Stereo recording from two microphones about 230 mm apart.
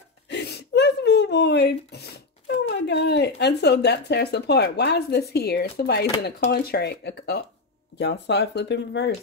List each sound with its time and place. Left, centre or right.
0.3 s speech: left